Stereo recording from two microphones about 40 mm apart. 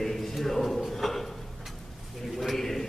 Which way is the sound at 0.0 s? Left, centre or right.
Centre.